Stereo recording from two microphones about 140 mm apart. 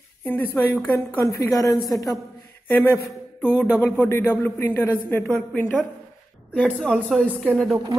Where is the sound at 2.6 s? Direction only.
15° left (ahead or behind).